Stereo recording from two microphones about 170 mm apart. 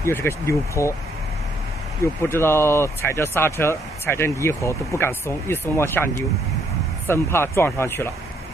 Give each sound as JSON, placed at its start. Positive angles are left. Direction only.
{"t": 0.0, "sound": "speech", "side_deg": 15}
{"t": 2.2, "sound": "speech", "side_deg": 15}